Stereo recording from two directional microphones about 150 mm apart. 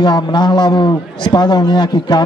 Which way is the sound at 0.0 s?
30° left (ahead or behind).